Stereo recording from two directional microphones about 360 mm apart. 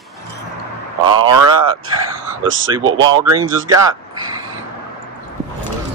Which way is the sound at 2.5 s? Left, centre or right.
Right.